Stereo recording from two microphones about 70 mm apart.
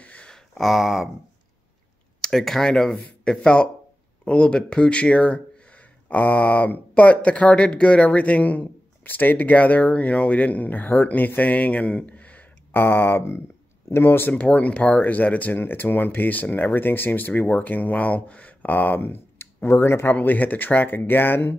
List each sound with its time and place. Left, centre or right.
0.0 s a sound: centre
0.6 s a sound: centre
2.2 s speech: centre; by 12.8 s left
12.8 s speech: left
14.4 s speech: centre; by 20.2 s left
20.2 s speech: left